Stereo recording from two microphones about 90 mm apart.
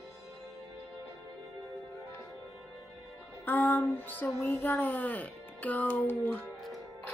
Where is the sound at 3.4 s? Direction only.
20° left (ahead or behind).